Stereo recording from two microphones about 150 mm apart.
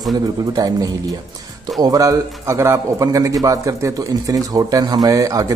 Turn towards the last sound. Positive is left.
turn(degrees=-25)  # may be behind; listen again after turning